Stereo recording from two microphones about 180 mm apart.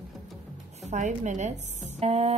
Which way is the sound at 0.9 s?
40° right (ahead or behind).